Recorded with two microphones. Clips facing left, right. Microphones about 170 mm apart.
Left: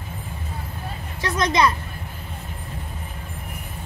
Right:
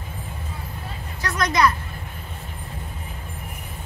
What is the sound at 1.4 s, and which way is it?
Speech, 25° left (ahead or behind).